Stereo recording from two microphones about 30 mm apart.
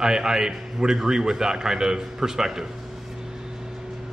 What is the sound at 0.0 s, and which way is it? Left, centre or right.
A man's voice, centre.